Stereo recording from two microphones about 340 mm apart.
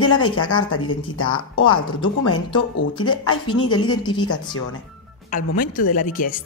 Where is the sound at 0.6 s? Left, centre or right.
Left.